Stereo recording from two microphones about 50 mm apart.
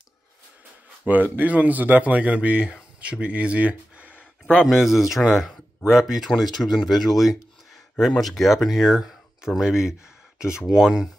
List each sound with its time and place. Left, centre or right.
1.0 s speech: right
4.6 s speech: centre